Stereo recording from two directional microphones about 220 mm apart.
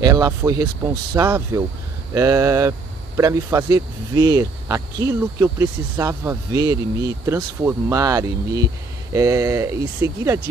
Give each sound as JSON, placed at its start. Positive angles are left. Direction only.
{"t": 0.0, "sound": "speech", "side_deg": -15}